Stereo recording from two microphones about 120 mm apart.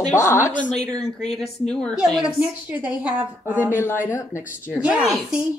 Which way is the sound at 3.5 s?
20° left (ahead or behind).